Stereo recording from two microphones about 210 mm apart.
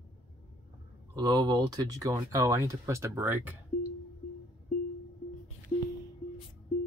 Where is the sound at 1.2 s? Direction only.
20° right (ahead or behind).